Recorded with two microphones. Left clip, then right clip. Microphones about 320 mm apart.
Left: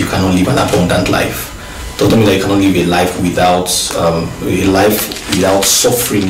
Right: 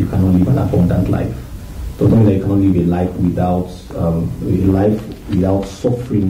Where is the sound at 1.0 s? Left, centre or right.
Centre.